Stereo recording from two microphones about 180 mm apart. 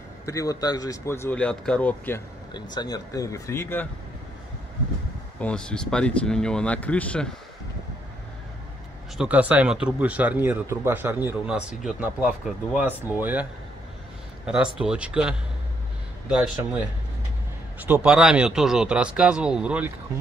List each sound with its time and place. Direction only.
0.2 s speech: 20° left (ahead or behind)
2.5 s speech: 20° left (ahead or behind)
5.4 s speech: 5° left (ahead or behind)
9.2 s speech: 10° right (ahead or behind)